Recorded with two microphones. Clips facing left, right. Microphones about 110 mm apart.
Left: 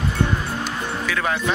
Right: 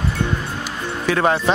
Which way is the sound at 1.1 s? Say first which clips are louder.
Right 7 dB; 35° right (ahead or behind).